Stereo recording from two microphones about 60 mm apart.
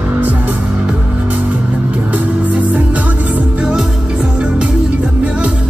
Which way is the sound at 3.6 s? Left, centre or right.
Centre.